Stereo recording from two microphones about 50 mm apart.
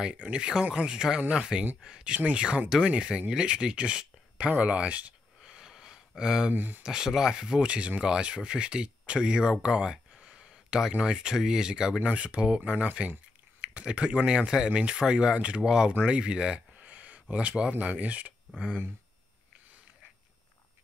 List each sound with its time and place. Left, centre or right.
0.0 s speech: centre
5.4 s a sound: centre
6.5 s speech: right
6.8 s speech: centre
12.0 s speech: right
16.7 s speech: right